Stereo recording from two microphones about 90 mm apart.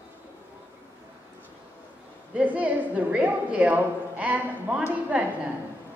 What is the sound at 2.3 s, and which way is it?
A woman's voice, 15° right (ahead or behind).